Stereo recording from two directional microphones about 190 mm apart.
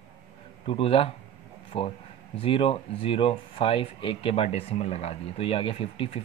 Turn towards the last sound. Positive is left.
turn(degrees=30)  # may be behind; listen again after turning